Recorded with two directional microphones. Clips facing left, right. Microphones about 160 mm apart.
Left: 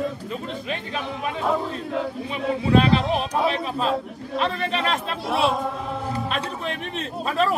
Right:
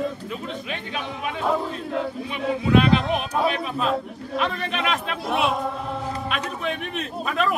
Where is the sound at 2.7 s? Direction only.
30° left (ahead or behind).